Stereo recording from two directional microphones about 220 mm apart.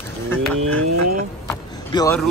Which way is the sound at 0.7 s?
90° right.